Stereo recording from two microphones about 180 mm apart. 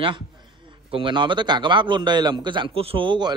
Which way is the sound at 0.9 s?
25° right (ahead or behind).